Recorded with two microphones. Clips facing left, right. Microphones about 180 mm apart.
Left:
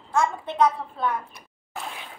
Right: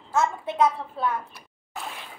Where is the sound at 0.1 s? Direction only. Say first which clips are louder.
Even; 5° right (ahead or behind).